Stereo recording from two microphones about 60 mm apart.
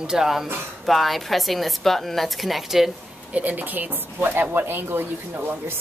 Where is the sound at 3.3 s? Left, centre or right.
Right.